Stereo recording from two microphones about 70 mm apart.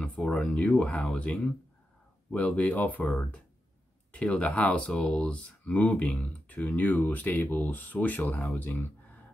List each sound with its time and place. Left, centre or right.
0.0 s speech: centre; by 8.9 s left